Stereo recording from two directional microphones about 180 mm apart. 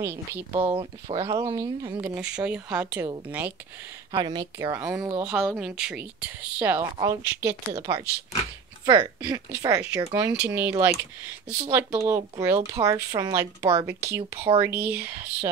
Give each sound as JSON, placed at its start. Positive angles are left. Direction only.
{"t": 0.0, "sound": "speech", "side_deg": -15}
{"t": 0.7, "sound": "speech", "side_deg": -30}
{"t": 1.3, "sound": "speech", "side_deg": -20}
{"t": 4.1, "sound": "speech", "side_deg": -25}